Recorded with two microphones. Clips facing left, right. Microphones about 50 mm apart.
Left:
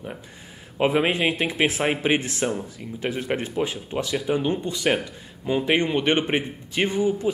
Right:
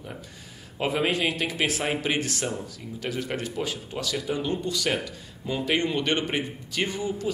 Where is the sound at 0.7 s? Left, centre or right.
Left.